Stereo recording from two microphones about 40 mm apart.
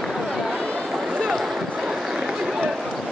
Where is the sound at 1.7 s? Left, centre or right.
Centre.